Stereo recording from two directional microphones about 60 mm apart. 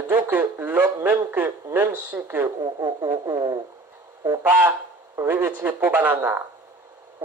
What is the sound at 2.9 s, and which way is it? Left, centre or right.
Speech, right.